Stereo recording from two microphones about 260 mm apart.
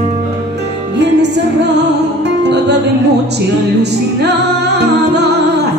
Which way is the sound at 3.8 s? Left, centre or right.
Right.